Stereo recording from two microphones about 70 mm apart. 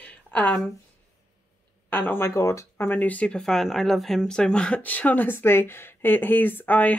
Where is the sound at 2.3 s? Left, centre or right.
Left.